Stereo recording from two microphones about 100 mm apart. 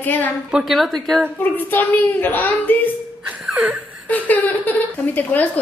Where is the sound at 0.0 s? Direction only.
20° left (ahead or behind).